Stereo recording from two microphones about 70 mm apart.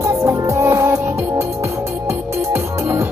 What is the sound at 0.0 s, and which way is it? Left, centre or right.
Music, right.